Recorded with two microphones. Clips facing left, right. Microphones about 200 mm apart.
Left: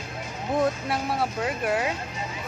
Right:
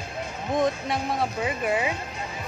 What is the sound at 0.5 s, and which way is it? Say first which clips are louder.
Speech: even; 5° left (ahead or behind).